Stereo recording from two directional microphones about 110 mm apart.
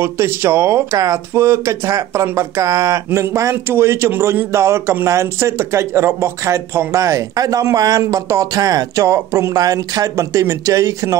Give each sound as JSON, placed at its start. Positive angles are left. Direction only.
{"t": 0.0, "sound": "speech", "side_deg": -25}